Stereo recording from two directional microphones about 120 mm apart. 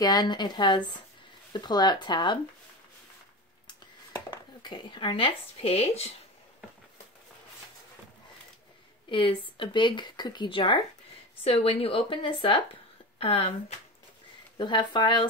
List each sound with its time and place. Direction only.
0.0 s speech: 35° left (ahead or behind)
4.3 s speech: 40° left (ahead or behind); by 6.1 s 60° left (ahead or behind)
9.1 s a woman's voice: 45° left (ahead or behind)
13.2 s speech: 55° left (ahead or behind)
14.6 s speech: 40° left (ahead or behind)